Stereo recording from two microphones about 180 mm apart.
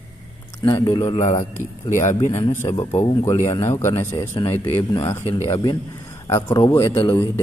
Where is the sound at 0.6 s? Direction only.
20° left (ahead or behind).